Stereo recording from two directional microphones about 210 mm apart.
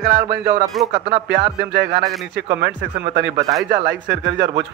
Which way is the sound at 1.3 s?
55° right (ahead or behind).